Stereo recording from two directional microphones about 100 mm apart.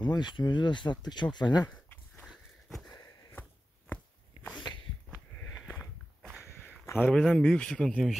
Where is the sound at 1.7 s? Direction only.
15° left (ahead or behind).